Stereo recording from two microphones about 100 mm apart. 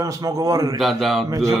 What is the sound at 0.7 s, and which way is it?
Speech, centre (ahead or behind).